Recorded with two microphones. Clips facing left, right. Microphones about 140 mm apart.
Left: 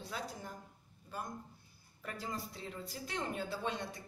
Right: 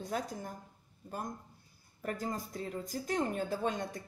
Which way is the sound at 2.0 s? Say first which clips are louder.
Right 5 dB; 45° right (ahead or behind).